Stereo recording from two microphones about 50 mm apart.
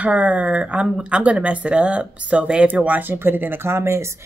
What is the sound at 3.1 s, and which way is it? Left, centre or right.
Speech, right.